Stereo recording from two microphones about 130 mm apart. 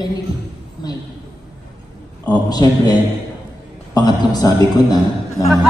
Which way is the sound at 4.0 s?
30° left (ahead or behind).